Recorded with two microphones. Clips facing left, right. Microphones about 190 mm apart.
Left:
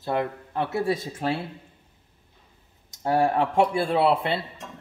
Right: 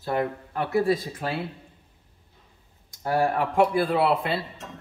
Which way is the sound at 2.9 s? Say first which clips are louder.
Left 2 dB; 20° left (ahead or behind).